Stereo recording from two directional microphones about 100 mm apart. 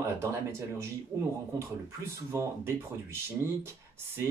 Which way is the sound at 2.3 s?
25° right (ahead or behind).